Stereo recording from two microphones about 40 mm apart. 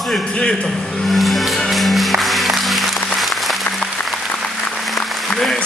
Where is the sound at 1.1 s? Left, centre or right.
Centre.